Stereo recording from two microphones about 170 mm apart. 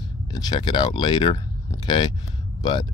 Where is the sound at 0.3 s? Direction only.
25° left (ahead or behind).